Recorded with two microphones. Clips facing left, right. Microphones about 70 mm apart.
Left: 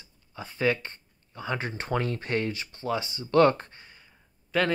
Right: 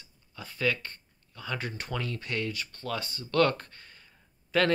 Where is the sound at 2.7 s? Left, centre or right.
Centre.